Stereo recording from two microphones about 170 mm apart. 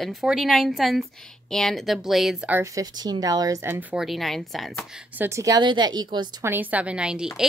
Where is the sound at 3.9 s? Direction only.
Centre (ahead or behind).